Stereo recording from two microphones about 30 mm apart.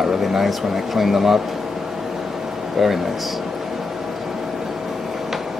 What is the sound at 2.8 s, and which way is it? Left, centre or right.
Speech, centre.